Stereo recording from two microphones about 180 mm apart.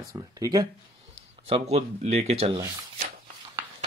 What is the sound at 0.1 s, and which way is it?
Speech, 20° right (ahead or behind).